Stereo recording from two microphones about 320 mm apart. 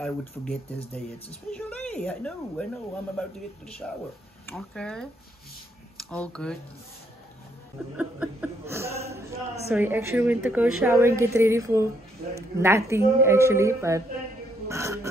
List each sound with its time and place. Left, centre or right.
0.0 s a woman's voice: centre
1.7 s a woman's voice: centre
6.0 s a woman's voice: centre
8.0 s a woman's voice: centre